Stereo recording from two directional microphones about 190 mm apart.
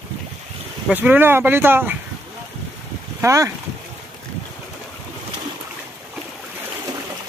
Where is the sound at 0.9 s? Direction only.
10° right (ahead or behind).